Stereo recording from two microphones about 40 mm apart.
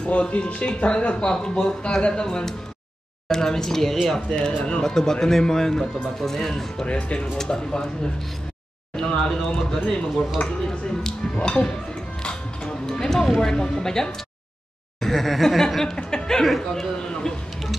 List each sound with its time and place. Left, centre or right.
0.0 s speech: left; by 4.0 s centre
4.3 s speech: left
4.8 s speech: centre
6.9 s speech: left
7.5 s speech: centre
9.0 s speech: left
11.3 s speech: left
12.2 s music: centre
13.4 s speech: centre
17.0 s speech: centre